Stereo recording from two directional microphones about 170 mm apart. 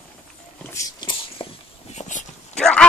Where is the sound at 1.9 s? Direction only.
40° left (ahead or behind).